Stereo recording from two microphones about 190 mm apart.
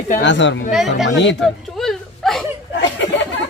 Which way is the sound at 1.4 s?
Centre (ahead or behind).